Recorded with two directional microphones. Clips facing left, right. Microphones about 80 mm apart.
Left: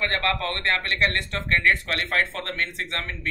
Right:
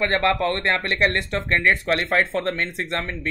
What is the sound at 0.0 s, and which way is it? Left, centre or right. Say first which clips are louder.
Speech: right 5 dB; right.